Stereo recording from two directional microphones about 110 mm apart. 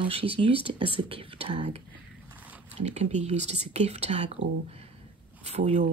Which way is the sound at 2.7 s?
90° right.